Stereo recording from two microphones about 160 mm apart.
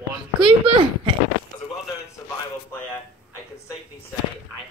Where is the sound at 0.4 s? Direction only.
30° right (ahead or behind).